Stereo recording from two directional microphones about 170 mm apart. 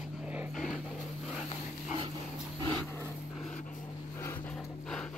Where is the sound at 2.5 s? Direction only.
25° right (ahead or behind).